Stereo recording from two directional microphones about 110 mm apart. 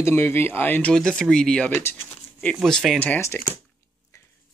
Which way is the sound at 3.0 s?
15° left (ahead or behind).